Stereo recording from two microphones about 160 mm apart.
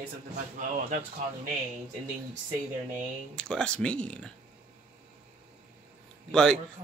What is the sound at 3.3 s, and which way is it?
Speech, 5° left (ahead or behind).